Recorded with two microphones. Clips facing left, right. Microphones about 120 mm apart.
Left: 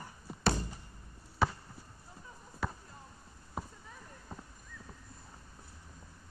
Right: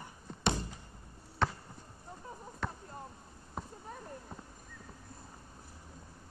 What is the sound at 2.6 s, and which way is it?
Basketball bounce, 5° left (ahead or behind).